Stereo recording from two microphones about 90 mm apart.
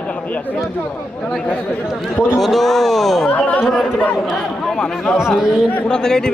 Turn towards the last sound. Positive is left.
turn(degrees=5)  # may be behind; listen again after turning